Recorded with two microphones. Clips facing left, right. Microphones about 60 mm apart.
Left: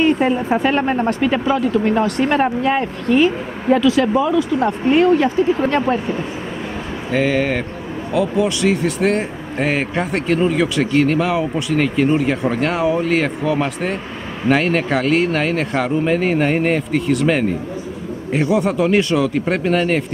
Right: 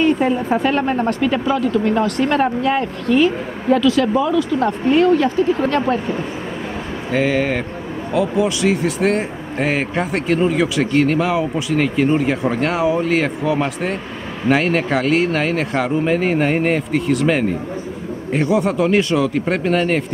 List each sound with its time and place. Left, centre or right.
0.0 s speech: left
7.1 s speech: centre